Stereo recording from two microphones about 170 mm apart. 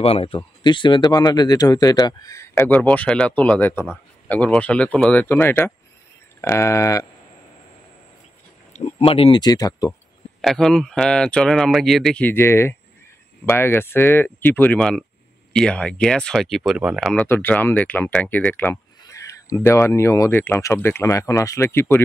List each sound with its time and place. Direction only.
0.0 s speech: 35° left (ahead or behind); by 7.1 s 20° left (ahead or behind)
8.7 s speech: 40° left (ahead or behind); by 9.9 s 20° left (ahead or behind)
10.4 s speech: 5° left (ahead or behind)
17.1 s speech: 10° left (ahead or behind)